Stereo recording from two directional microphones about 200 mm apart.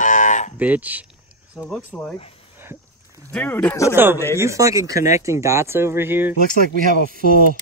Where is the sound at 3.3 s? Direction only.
5° left (ahead or behind).